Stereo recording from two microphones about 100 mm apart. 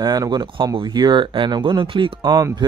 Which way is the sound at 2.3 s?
35° right (ahead or behind).